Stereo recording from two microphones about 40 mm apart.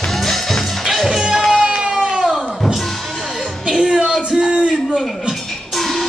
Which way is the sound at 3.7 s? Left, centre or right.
Centre.